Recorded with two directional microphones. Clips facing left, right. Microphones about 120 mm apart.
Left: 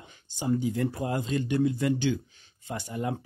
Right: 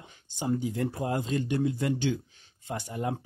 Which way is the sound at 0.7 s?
25° right (ahead or behind).